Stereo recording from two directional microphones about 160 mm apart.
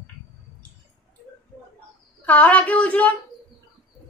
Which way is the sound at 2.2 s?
10° left (ahead or behind).